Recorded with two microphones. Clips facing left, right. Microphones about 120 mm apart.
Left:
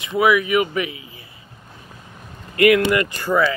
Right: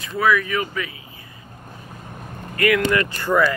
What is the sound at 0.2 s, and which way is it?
Speech, 15° left (ahead or behind).